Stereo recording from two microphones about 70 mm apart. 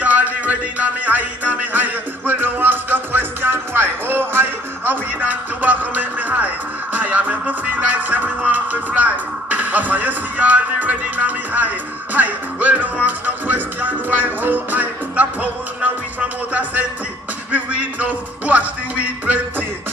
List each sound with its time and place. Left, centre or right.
0.0 s music: right